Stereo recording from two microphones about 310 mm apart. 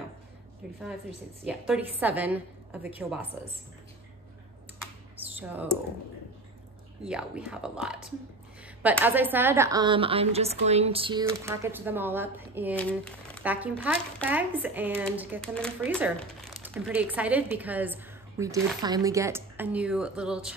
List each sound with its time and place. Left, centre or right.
1.4 s speech: centre
5.3 s speech: centre
7.1 s speech: centre